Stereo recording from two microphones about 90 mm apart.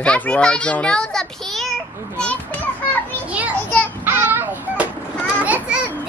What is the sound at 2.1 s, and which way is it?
Children playing, 15° left (ahead or behind).